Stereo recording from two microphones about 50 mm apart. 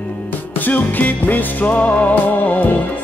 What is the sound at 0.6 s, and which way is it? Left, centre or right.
Music, left.